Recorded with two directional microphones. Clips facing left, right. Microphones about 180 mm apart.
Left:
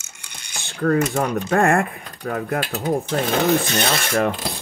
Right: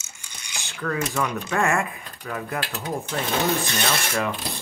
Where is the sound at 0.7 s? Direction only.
45° left (ahead or behind).